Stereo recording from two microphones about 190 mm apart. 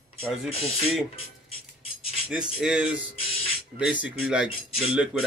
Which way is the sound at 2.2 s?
5° right (ahead or behind).